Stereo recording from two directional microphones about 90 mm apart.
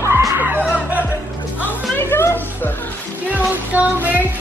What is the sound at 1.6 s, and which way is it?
Music, 25° left (ahead or behind).